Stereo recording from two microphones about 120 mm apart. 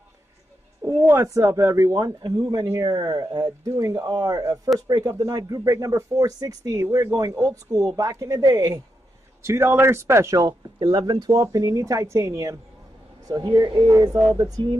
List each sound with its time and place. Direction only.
0.8 s a woman's voice: 20° right (ahead or behind)
9.4 s a woman's voice: 20° right (ahead or behind)
13.3 s a woman's voice: 35° right (ahead or behind)